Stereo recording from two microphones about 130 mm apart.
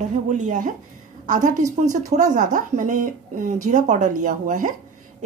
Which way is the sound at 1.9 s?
70° right (ahead or behind).